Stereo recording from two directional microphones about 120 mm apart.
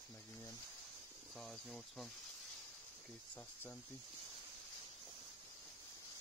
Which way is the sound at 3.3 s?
15° left (ahead or behind).